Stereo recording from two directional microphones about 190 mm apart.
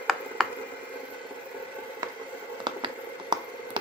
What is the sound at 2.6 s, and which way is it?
Squish, 25° right (ahead or behind).